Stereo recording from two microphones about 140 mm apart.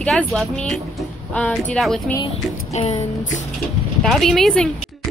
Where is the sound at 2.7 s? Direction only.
45° left (ahead or behind).